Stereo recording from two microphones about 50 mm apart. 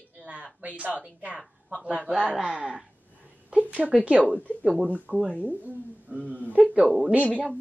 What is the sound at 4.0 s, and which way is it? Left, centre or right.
A woman's voice, right.